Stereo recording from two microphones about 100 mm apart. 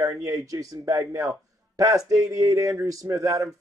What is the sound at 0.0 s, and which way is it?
A man's voice, 35° right (ahead or behind).